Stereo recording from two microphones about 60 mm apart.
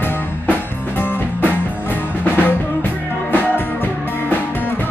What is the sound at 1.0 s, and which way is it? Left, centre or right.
Music, left.